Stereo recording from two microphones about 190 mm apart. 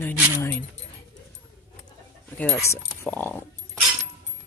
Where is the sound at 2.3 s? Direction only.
5° left (ahead or behind).